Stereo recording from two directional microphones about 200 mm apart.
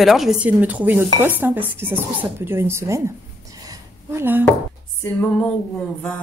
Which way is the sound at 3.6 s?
10° right (ahead or behind).